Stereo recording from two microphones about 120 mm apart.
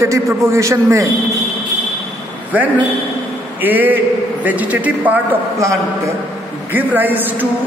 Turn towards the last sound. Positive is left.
turn(degrees=-15)  # may be behind; listen again after turning